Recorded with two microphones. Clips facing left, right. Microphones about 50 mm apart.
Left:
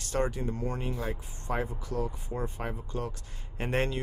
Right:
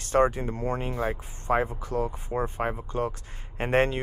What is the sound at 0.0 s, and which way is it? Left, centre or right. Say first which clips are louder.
Speech: right 8 dB; right.